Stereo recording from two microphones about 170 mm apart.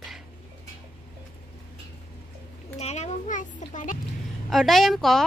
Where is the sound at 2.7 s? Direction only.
40° left (ahead or behind).